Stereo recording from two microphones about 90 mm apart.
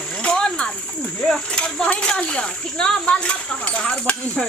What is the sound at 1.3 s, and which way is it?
Speech, 10° left (ahead or behind).